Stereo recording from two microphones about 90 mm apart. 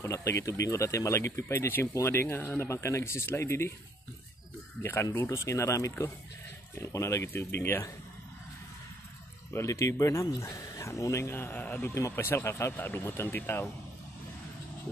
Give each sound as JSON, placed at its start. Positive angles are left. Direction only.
{"t": 0.0, "sound": "speech", "side_deg": 35}
{"t": 5.1, "sound": "speech", "side_deg": 30}
{"t": 9.5, "sound": "speech", "side_deg": 35}